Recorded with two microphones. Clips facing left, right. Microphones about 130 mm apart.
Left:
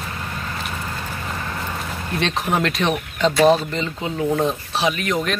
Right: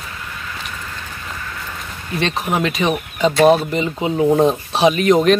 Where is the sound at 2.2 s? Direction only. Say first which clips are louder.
Right 2 dB; centre (ahead or behind); by 5.3 s 25° right (ahead or behind).